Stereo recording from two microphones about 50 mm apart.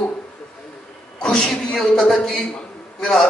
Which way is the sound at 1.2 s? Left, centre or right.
Centre.